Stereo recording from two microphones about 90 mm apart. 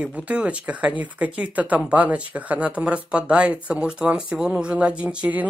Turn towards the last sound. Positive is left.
turn(degrees=-15)  # may be behind; listen again after turning